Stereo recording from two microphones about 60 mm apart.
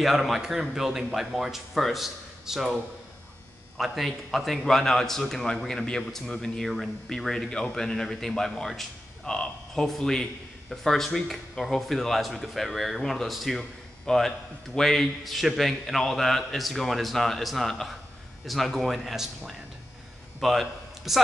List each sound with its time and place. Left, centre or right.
0.0 s a man's voice: centre
9.2 s a man's voice: centre
20.3 s a sound: centre